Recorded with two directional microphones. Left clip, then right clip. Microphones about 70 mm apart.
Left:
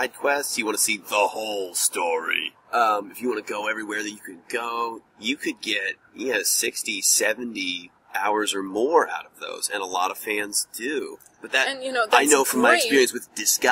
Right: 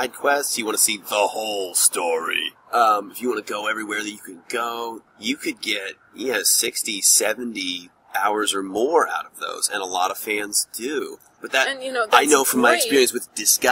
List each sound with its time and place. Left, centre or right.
0.0 s speech: right
11.6 s speech: centre
12.1 s speech: right